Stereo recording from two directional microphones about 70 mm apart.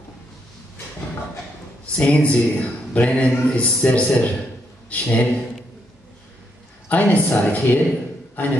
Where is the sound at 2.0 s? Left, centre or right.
Centre.